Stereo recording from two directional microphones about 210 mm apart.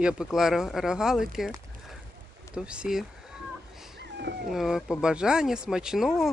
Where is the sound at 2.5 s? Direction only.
5° right (ahead or behind).